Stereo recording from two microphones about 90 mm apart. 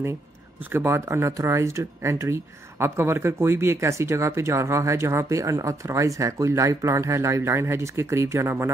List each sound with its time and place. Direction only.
0.7 s speech: 25° right (ahead or behind)